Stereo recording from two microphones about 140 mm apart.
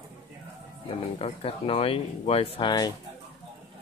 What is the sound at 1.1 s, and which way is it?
Speech, 45° left (ahead or behind).